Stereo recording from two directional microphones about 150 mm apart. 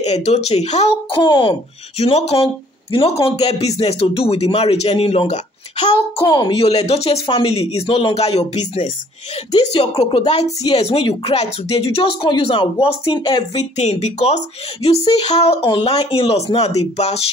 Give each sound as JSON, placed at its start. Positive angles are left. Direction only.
{"t": 0.0, "sound": "speech", "side_deg": 45}
{"t": 1.2, "sound": "speech", "side_deg": 35}